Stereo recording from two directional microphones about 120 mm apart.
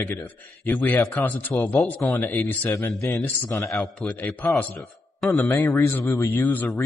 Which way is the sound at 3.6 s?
Centre (ahead or behind).